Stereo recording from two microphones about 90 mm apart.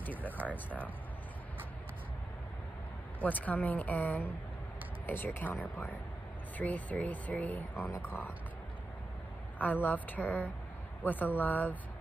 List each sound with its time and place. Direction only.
0.4 s speech: 15° right (ahead or behind)
3.2 s a woman's voice: 15° left (ahead or behind)
6.6 s a woman's voice: 15° left (ahead or behind)
9.6 s a woman's voice: 20° left (ahead or behind)